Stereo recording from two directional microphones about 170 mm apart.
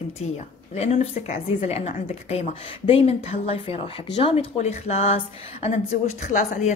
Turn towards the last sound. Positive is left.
turn(degrees=45)  # may be behind; listen again after turning